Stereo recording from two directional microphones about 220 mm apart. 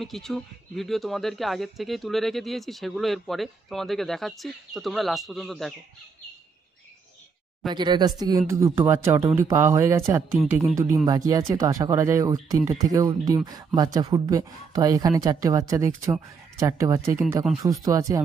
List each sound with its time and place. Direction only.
0.0 s speech: centre (ahead or behind)
7.7 s speech: 20° right (ahead or behind)